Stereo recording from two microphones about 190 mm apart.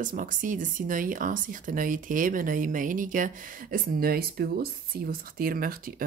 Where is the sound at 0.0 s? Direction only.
45° right (ahead or behind).